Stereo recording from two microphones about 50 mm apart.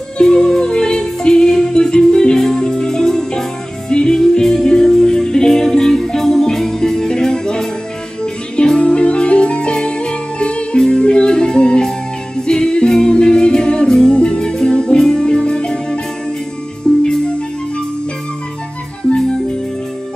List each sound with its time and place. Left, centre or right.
0.2 s music: centre